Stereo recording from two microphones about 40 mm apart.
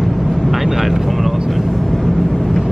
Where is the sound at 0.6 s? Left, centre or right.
Centre.